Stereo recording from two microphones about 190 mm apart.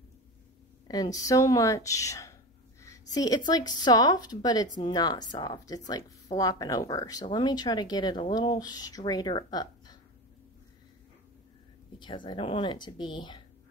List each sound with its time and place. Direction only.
0.8 s speech: 20° left (ahead or behind)
12.0 s speech: 25° left (ahead or behind)